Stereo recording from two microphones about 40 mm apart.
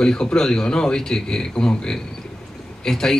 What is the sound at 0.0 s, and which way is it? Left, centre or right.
Speech, centre.